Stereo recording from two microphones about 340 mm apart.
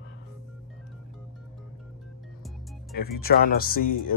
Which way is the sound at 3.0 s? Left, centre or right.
Left.